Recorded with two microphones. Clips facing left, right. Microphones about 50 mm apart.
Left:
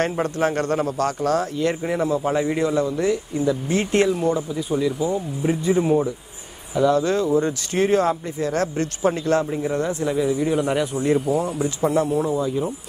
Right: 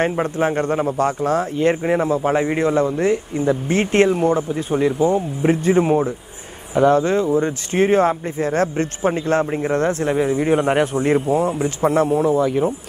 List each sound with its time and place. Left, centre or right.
0.0 s speech: right
12.4 s speech: right